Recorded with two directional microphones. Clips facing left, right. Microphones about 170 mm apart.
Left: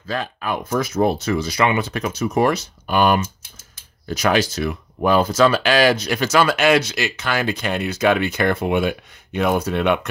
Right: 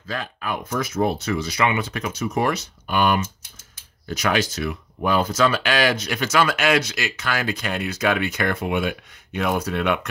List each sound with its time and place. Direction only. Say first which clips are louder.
0.0 s speech: left 4 dB; 35° left (ahead or behind)